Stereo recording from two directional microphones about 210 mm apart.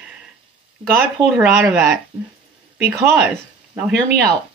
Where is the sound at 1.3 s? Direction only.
5° right (ahead or behind).